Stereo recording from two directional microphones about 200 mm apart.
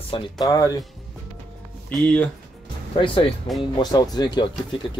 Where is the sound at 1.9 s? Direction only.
5° left (ahead or behind).